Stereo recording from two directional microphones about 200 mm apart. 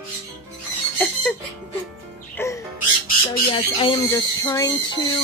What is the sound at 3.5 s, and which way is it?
Speech, 20° left (ahead or behind).